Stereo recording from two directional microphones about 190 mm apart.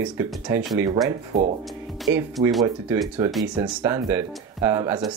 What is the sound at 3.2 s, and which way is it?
Speech, centre (ahead or behind).